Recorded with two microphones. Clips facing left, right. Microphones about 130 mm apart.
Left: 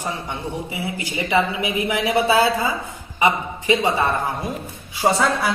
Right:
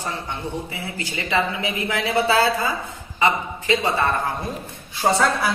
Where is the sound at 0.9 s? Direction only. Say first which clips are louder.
Left 3 dB; 15° left (ahead or behind).